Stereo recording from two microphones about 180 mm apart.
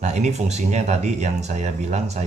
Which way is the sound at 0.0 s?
40° right (ahead or behind).